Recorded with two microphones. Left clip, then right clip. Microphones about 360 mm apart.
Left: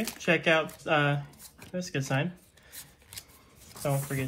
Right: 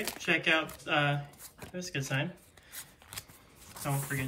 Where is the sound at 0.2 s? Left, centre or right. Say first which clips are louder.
Left 3 dB; centre.